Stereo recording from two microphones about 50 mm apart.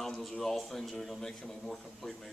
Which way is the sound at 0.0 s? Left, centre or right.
Centre.